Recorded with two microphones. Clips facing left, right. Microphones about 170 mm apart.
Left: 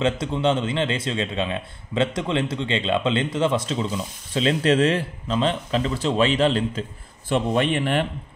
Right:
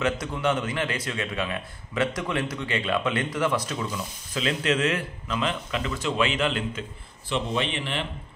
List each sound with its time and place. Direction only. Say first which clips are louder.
0.0 s a man's voice: left 4 dB; 25° left (ahead or behind)
7.2 s a man's voice: left 6 dB; 50° left (ahead or behind)